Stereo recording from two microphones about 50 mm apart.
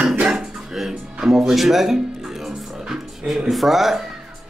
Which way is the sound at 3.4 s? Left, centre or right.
Centre.